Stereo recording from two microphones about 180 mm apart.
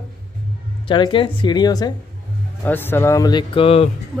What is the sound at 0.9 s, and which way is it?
Speech, 30° left (ahead or behind).